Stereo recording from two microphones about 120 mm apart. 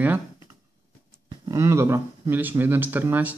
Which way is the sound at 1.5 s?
25° right (ahead or behind).